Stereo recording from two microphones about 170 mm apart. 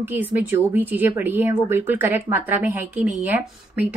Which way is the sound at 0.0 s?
10° right (ahead or behind).